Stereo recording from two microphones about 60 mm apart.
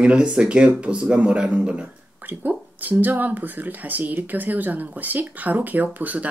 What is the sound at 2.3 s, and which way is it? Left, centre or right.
Speech, right.